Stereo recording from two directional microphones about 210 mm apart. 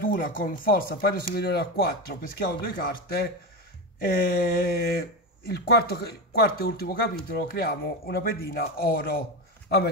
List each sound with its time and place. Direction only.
0.0 s speech: 40° left (ahead or behind)